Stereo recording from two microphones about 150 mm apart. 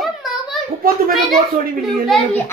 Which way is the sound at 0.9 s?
75° right (ahead or behind).